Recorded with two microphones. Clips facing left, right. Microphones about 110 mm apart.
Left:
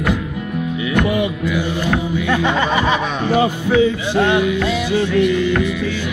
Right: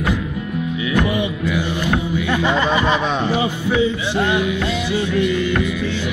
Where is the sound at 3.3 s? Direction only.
50° left (ahead or behind).